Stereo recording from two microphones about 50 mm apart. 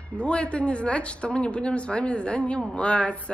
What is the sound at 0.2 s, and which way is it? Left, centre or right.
Speech, left.